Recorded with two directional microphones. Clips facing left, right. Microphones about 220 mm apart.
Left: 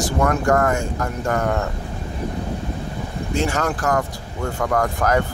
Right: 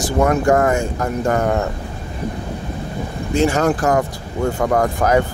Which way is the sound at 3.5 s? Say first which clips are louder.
Right 5 dB; 25° right (ahead or behind).